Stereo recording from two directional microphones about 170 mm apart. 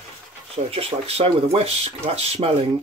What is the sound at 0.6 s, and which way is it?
Speech, 35° right (ahead or behind).